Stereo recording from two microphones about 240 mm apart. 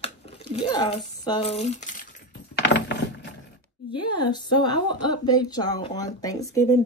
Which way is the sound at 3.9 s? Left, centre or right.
Centre.